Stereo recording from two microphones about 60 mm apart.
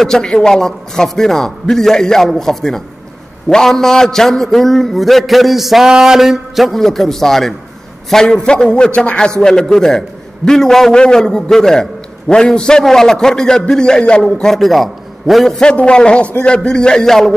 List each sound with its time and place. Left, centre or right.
0.0 s a man's voice: centre
15.6 s a man's voice: centre